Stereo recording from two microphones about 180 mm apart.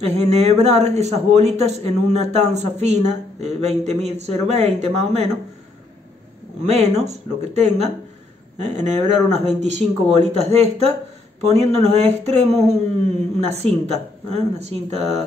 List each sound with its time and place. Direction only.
0.0 s a man's voice: 35° right (ahead or behind)
6.6 s a man's voice: 35° right (ahead or behind)